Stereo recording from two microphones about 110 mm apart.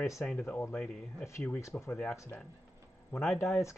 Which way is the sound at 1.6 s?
20° left (ahead or behind).